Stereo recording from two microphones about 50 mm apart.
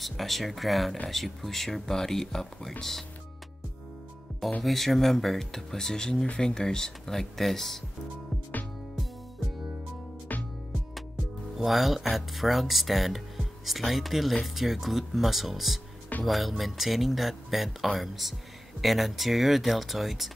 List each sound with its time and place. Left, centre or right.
0.0 s speech: centre
4.3 s music: centre
4.6 s speech: centre
10.3 s music: left
11.5 s speech: centre